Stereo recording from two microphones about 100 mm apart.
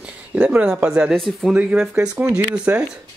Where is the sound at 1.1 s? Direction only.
Centre (ahead or behind).